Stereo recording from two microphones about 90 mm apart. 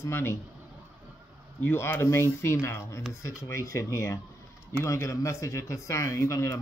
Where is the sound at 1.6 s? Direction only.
25° left (ahead or behind).